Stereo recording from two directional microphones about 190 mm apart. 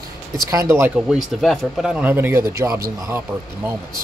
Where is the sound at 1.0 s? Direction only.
Centre (ahead or behind).